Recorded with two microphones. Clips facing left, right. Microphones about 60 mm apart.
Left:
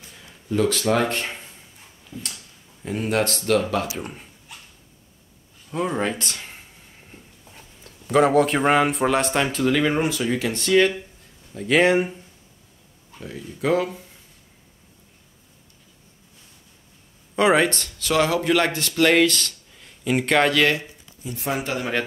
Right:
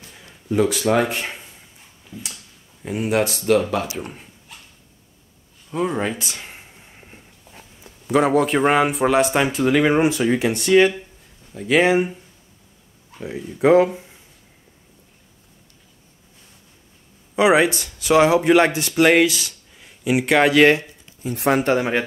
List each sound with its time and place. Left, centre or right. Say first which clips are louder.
0.5 s a man's voice: right 2 dB; centre
2.0 s a sound: even; centre
2.8 s a man's voice: right 2 dB; centre
5.7 s speech: right 2 dB; centre
6.6 s a sound: right 3 dB; right
7.5 s a man's voice: right 3 dB; centre; by 10.5 s right
10.5 s a man's voice: right 2 dB; centre
13.2 s speech: right 8 dB; right
17.4 s speech: right 3 dB; centre
20.5 s speech: right 6 dB; right
21.2 s speech: right 8 dB; right